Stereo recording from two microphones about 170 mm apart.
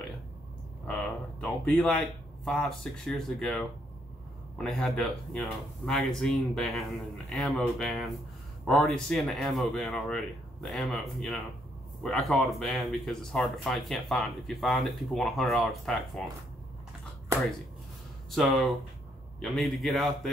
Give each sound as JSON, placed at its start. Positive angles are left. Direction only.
{"t": 1.4, "sound": "speech", "side_deg": 5}
{"t": 18.3, "sound": "speech", "side_deg": 0}